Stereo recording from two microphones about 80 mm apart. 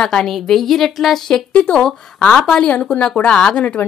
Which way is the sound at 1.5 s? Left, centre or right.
Centre.